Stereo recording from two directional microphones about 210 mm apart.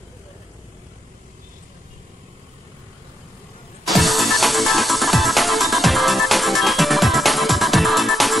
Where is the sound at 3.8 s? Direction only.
Centre (ahead or behind).